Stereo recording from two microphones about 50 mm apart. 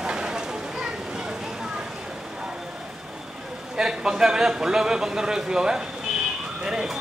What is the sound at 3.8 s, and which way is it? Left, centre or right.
A man's voice, centre.